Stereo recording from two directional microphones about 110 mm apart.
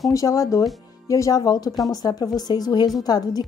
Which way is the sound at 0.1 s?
30° left (ahead or behind).